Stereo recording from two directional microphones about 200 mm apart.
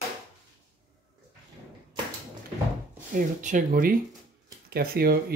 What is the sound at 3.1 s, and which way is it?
Speech, 45° right (ahead or behind).